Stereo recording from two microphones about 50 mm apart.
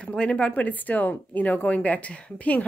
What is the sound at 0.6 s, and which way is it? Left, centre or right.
A woman's voice, left.